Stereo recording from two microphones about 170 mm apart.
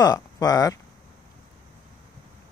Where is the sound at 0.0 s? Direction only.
20° left (ahead or behind).